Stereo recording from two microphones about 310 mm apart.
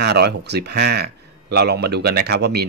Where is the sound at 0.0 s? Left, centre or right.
Right.